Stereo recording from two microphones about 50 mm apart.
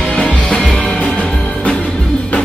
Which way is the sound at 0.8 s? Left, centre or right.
Left.